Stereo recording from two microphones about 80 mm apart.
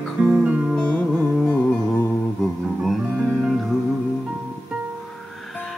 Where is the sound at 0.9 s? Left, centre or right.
Left.